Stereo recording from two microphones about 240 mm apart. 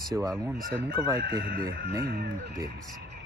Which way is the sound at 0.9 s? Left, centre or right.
Centre.